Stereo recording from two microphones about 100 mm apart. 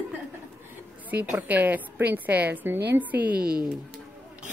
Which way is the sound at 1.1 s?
15° right (ahead or behind).